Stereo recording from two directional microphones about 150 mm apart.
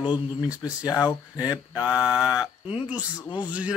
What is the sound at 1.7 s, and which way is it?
Mantra, 5° right (ahead or behind).